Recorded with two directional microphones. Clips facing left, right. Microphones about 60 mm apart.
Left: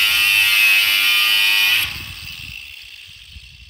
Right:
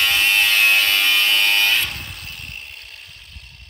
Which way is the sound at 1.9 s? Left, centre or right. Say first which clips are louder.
Even; right.